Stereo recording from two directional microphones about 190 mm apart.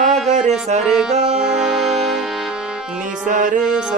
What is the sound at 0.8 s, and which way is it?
Accordion, centre (ahead or behind).